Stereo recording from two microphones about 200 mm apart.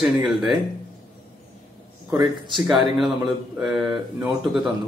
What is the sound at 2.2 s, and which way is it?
Speech, centre (ahead or behind).